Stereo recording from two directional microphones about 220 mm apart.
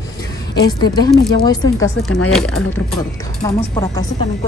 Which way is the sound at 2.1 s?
Centre (ahead or behind).